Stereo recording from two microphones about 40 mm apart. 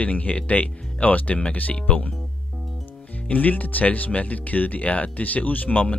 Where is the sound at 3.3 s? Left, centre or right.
Left.